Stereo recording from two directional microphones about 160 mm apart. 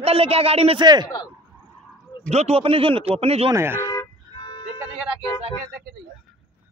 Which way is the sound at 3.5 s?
15° right (ahead or behind).